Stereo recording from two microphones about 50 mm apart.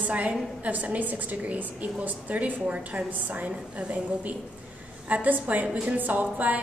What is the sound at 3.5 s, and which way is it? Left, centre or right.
A woman's voice, right.